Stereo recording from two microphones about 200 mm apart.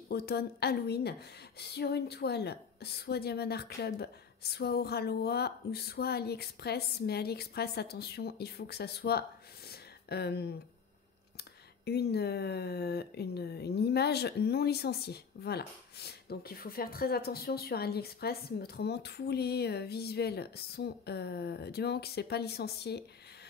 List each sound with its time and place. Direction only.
0.1 s speech: 50° left (ahead or behind)
9.7 s a sound: 55° left (ahead or behind)
11.8 s speech: 55° left (ahead or behind)